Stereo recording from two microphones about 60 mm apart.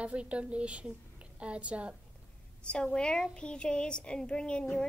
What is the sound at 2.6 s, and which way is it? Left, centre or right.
Speech, centre.